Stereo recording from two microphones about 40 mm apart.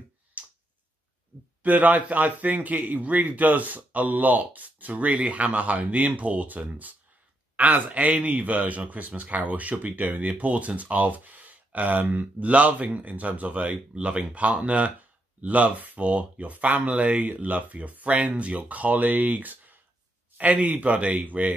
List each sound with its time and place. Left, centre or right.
0.4 s tick-tock: right
1.6 s a man's voice: right